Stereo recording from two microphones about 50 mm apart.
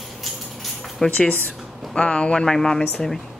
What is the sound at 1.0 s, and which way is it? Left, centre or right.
Speech, centre.